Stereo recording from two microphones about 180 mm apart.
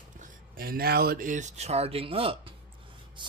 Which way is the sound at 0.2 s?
55° right (ahead or behind).